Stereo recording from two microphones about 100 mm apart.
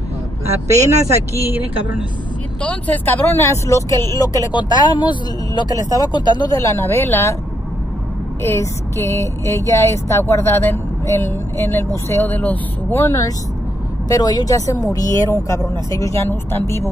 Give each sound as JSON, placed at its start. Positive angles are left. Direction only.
{"t": 1.0, "sound": "speech", "side_deg": -25}
{"t": 2.6, "sound": "speech", "side_deg": 15}
{"t": 4.5, "sound": "speech", "side_deg": 45}
{"t": 6.6, "sound": "speech", "side_deg": 25}
{"t": 8.4, "sound": "speech", "side_deg": 25}
{"t": 13.0, "sound": "speech", "side_deg": 30}